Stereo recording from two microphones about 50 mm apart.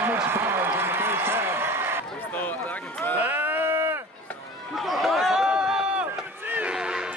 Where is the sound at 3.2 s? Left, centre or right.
Right.